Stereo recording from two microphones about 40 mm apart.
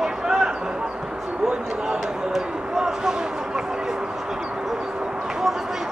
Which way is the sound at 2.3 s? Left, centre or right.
Centre.